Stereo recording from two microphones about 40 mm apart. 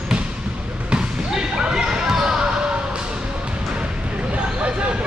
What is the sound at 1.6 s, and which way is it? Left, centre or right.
Basketball bounce, centre.